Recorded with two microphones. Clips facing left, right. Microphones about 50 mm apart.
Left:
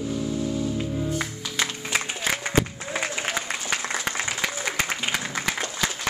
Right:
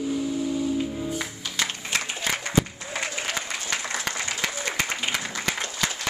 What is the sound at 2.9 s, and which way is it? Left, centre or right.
Applause, centre.